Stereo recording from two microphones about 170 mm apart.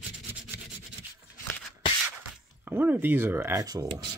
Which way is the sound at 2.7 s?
10° right (ahead or behind).